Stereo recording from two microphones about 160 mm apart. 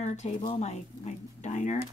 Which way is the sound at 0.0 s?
45° left (ahead or behind).